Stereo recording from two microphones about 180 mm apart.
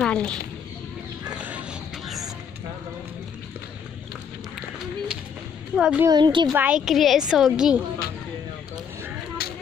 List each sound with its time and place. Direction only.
0.0 s a child's voice: 5° left (ahead or behind)
1.3 s a sound: 5° right (ahead or behind)
4.6 s run: 5° right (ahead or behind)
5.8 s a woman's voice: 5° right (ahead or behind)
6.0 s a woman's voice: 25° right (ahead or behind)
6.5 s a woman's voice: 5° right (ahead or behind)
9.4 s a sound: 60° left (ahead or behind)